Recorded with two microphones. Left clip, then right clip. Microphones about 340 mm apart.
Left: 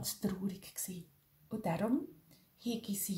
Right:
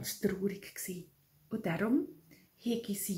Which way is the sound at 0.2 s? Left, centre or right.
Left.